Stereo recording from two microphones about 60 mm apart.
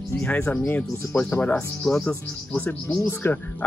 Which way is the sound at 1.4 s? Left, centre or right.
Centre.